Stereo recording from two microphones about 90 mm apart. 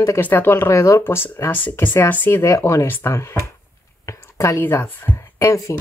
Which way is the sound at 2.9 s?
25° left (ahead or behind).